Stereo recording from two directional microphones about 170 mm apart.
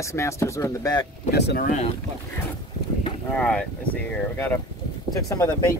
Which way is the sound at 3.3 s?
5° left (ahead or behind).